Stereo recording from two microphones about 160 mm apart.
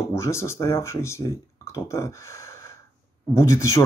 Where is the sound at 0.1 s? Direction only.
15° left (ahead or behind).